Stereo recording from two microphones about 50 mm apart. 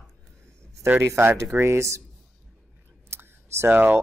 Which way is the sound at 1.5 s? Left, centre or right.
Right.